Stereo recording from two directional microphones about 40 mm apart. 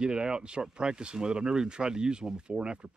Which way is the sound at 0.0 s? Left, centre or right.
Right.